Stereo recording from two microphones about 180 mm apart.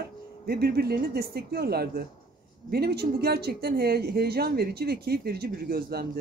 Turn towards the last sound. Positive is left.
turn(degrees=-60)  # may be behind; listen again after turning